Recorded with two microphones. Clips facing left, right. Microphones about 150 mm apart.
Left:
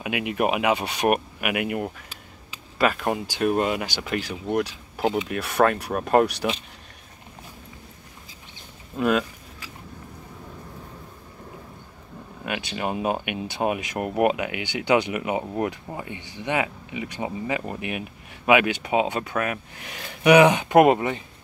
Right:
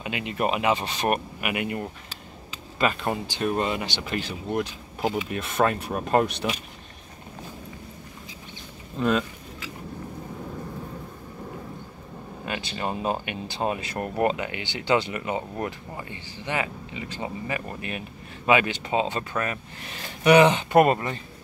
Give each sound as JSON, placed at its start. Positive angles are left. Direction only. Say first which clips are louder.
{"t": 0.0, "sound": "speech", "louder": "left 3 dB", "side_deg": 10}
{"t": 8.9, "sound": "speech", "louder": "left 2 dB", "side_deg": 10}
{"t": 12.4, "sound": "speech", "louder": "left 2 dB", "side_deg": 10}